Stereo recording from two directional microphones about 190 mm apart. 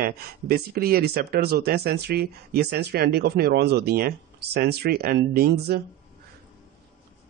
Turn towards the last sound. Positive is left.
turn(degrees=-55)  # may be behind; listen again after turning